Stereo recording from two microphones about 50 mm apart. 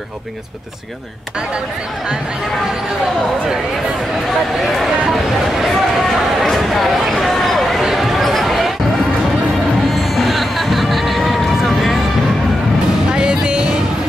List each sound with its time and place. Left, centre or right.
5.1 s speech: centre
6.4 s a sound: centre
9.9 s vehicle: centre
13.1 s music: centre